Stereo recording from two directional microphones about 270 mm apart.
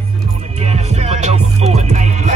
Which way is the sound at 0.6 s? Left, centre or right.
Right.